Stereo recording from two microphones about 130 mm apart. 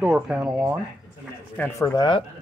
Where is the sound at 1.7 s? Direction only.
25° left (ahead or behind).